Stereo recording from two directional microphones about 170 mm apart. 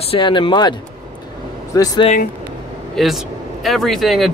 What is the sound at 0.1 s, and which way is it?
Speech, 30° left (ahead or behind).